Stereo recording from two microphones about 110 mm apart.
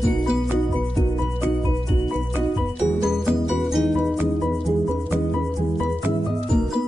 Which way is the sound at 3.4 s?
Centre (ahead or behind).